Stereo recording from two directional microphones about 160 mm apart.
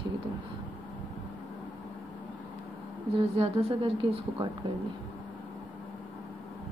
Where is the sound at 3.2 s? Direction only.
35° right (ahead or behind).